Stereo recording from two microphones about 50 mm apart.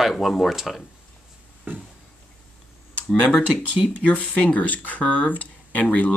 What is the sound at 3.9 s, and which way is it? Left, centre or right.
Speech, left.